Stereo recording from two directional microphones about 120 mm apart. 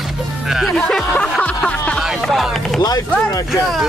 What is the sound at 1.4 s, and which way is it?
Music, 10° left (ahead or behind).